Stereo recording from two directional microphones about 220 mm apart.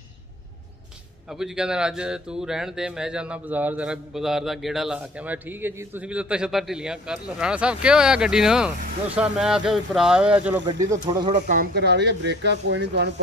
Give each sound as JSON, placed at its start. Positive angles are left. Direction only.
{"t": 1.3, "sound": "speech", "side_deg": -5}
{"t": 10.7, "sound": "speech", "side_deg": -15}
{"t": 11.2, "sound": "speech", "side_deg": -35}